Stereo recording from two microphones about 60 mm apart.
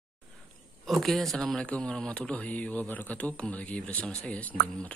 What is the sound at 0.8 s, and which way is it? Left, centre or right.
Speech, centre.